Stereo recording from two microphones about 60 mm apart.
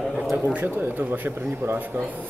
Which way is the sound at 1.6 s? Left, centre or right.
Right.